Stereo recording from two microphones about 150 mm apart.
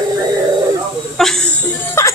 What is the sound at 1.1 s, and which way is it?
Speech, centre (ahead or behind).